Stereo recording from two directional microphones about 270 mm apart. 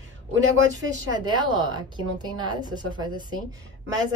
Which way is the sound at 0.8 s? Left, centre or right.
Centre.